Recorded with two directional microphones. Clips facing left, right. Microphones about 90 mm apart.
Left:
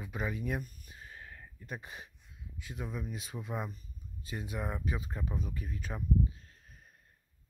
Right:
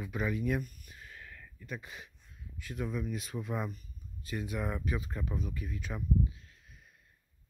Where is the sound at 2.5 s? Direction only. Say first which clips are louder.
Right 4 dB; 20° left (ahead or behind).